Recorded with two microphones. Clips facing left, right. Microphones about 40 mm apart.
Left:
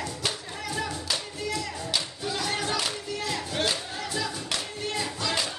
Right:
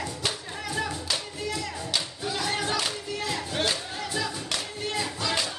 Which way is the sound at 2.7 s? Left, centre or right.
Centre.